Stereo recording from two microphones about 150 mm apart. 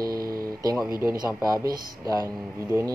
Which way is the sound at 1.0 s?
20° right (ahead or behind).